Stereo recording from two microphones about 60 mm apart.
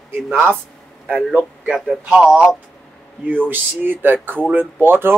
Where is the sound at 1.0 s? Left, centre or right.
Right.